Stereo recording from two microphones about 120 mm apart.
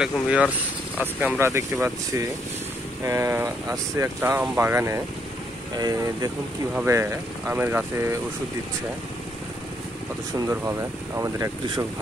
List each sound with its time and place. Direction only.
0.0 s speech: 10° right (ahead or behind)
11.1 s speech: 25° right (ahead or behind)